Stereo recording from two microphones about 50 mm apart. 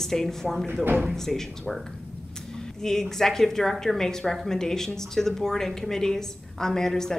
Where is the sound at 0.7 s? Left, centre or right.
Right.